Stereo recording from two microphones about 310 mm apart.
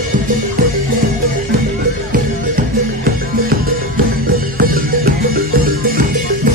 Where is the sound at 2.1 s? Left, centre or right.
Right.